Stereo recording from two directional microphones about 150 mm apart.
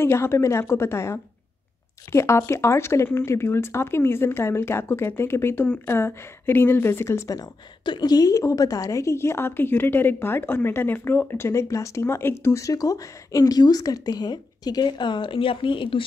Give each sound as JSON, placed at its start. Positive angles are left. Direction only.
{"t": 0.0, "sound": "speech", "side_deg": 15}